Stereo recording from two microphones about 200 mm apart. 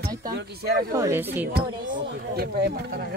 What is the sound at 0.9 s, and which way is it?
Speech, 15° right (ahead or behind).